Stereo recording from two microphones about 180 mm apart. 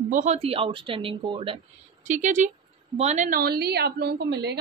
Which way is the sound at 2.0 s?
45° right (ahead or behind).